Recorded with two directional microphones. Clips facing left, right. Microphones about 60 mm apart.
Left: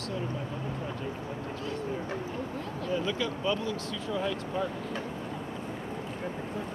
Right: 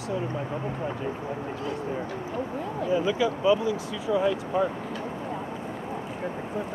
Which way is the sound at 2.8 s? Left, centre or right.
Centre.